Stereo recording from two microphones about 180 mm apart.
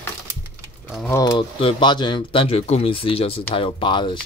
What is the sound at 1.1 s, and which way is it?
Speech, 20° left (ahead or behind).